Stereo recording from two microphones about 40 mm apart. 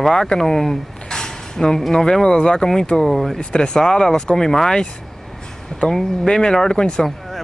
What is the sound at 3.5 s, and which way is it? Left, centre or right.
Speech, left.